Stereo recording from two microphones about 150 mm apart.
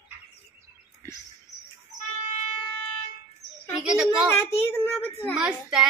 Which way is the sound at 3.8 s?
5° right (ahead or behind).